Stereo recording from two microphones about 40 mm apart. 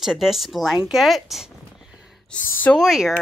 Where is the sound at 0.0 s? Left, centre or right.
Centre.